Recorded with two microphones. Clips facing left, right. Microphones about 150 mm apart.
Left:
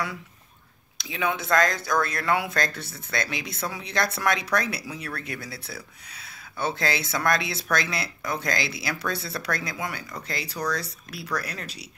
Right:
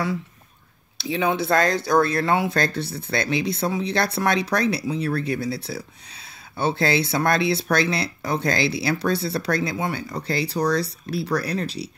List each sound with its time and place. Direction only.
0.9 s speech: 30° right (ahead or behind)